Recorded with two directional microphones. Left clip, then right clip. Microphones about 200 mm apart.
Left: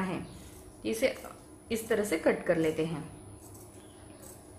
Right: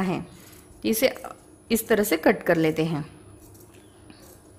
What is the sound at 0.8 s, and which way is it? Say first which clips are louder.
A woman's voice: right 7 dB; 50° right (ahead or behind).